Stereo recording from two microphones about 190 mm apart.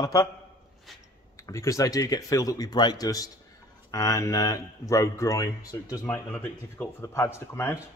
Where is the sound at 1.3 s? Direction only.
15° left (ahead or behind).